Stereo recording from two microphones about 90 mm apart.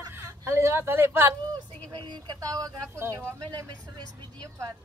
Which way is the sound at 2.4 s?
40° right (ahead or behind).